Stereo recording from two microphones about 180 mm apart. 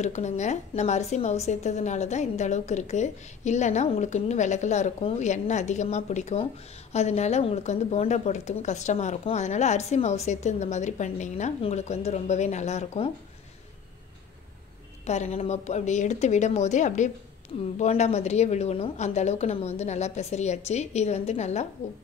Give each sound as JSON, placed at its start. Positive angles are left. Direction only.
{"t": 0.0, "sound": "a woman's voice", "side_deg": 40}
{"t": 15.0, "sound": "a woman's voice", "side_deg": 40}